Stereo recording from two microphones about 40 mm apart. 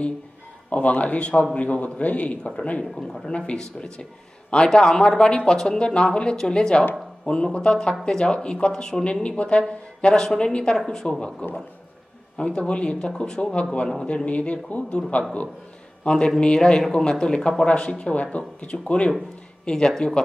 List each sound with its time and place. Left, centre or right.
0.7 s a man's voice: left
2.8 s a man's voice: centre
3.3 s speech: left
4.7 s speech: centre
12.4 s a man's voice: left
19.7 s a man's voice: centre